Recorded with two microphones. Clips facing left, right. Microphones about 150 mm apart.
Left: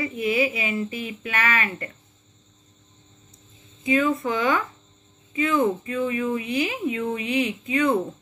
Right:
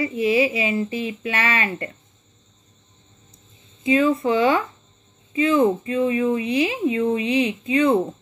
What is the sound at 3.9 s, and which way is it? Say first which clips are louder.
Speech: right 4 dB; 30° right (ahead or behind).